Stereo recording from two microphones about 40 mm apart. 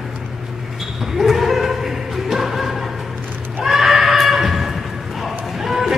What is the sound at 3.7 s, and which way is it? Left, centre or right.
Neigh, centre.